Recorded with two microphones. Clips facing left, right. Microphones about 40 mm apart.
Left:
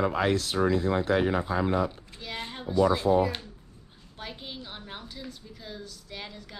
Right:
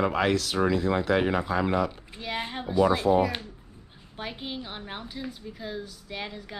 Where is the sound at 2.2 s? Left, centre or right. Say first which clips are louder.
Right 5 dB; centre.